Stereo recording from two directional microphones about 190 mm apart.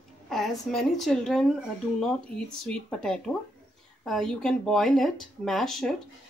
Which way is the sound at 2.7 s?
5° left (ahead or behind).